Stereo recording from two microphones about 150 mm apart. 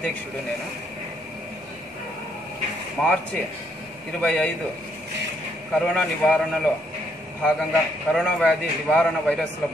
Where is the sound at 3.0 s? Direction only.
5° left (ahead or behind).